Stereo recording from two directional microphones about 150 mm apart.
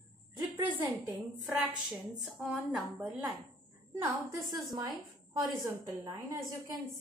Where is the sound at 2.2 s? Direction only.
Centre (ahead or behind).